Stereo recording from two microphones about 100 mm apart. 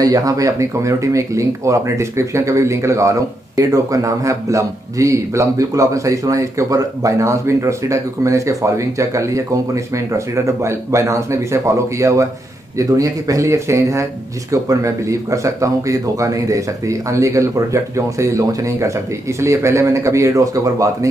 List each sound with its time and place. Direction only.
0.0 s speech: 35° right (ahead or behind)